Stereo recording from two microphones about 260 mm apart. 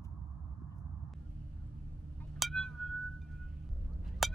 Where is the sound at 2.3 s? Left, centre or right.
Centre.